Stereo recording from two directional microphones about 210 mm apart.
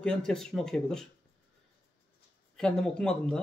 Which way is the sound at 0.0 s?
5° left (ahead or behind).